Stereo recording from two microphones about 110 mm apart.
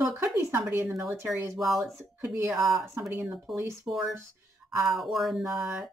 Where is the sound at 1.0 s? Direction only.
5° right (ahead or behind).